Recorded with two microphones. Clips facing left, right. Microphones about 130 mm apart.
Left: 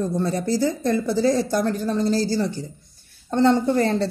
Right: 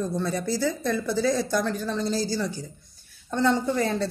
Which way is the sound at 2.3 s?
55° left (ahead or behind).